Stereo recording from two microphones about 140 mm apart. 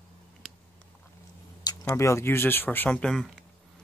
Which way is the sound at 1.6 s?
20° left (ahead or behind).